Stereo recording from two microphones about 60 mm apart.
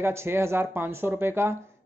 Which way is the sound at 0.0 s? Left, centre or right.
Right.